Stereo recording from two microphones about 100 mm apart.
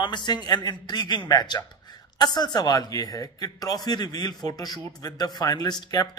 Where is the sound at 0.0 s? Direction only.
50° left (ahead or behind).